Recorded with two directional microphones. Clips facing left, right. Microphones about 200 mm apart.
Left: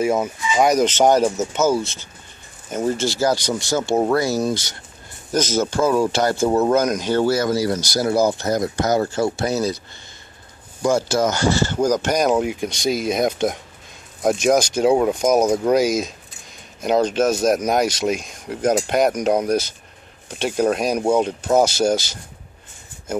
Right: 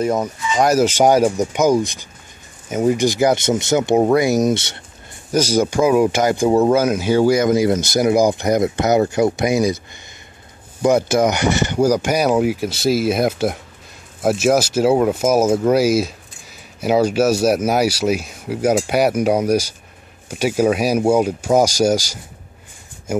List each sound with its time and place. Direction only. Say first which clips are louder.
0.0 s speech: right 1 dB; 5° left (ahead or behind); by 4.7 s 25° right (ahead or behind)
5.3 s speech: right 3 dB; 10° right (ahead or behind)
10.8 s speech: right 4 dB; 20° right (ahead or behind)